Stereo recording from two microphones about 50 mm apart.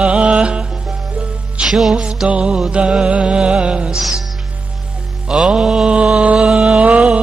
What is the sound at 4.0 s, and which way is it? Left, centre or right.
Music, centre.